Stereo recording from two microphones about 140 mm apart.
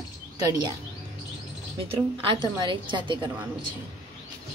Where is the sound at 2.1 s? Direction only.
40° right (ahead or behind).